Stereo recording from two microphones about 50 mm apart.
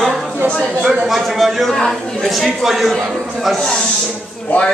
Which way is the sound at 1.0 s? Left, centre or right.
Centre.